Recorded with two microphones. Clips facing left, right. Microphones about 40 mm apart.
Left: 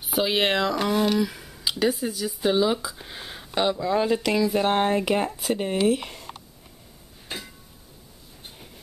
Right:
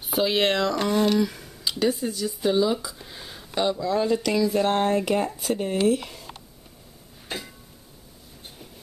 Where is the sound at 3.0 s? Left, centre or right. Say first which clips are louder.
Left 2 dB; left.